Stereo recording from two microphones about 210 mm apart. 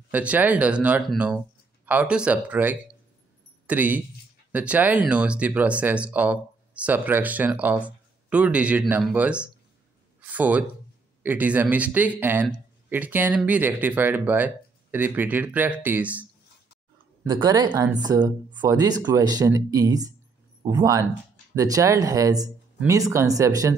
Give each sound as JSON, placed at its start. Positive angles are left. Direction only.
{"t": 0.1, "sound": "speech", "side_deg": -5}
{"t": 17.2, "sound": "speech", "side_deg": -15}